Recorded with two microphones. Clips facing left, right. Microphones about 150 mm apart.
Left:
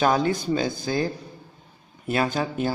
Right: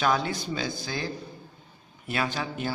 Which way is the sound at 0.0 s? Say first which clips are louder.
Left 5 dB; 40° left (ahead or behind).